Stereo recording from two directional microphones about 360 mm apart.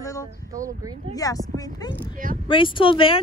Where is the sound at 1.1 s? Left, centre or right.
Centre.